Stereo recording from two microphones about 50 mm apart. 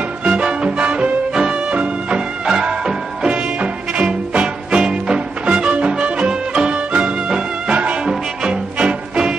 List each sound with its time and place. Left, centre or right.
0.2 s music: right
4.0 s music: right